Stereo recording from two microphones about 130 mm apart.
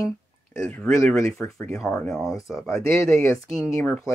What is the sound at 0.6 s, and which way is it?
Speech, 5° left (ahead or behind).